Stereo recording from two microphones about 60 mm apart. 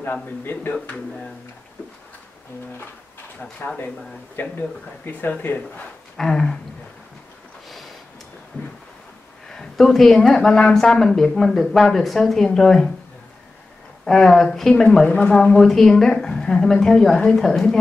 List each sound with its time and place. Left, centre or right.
0.0 s speech: left
0.9 s speech: centre
3.3 s speech: left
6.1 s a sound: centre
9.5 s speech: centre
14.0 s speech: centre